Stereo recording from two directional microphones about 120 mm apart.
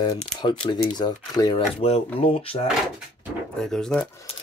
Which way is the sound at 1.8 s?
55° left (ahead or behind).